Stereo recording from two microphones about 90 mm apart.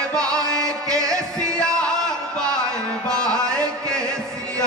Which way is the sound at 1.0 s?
40° right (ahead or behind).